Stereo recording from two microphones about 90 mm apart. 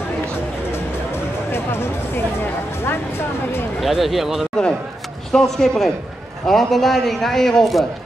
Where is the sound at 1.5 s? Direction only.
25° left (ahead or behind).